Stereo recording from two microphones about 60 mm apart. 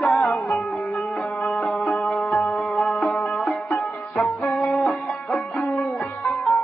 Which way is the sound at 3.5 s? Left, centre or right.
Centre.